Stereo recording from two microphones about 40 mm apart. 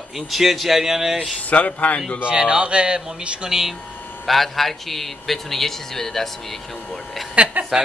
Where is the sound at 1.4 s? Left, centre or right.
Left.